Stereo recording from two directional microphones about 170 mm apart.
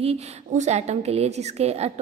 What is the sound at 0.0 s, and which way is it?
A woman's voice, 40° right (ahead or behind).